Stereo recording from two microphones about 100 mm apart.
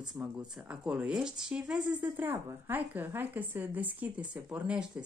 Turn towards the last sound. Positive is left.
turn(degrees=-10)  # may be behind; listen again after turning